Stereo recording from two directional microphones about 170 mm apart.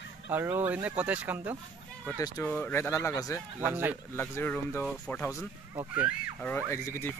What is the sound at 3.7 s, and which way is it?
Speech, 10° right (ahead or behind).